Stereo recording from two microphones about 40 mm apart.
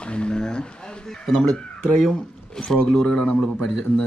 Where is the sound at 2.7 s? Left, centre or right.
Centre.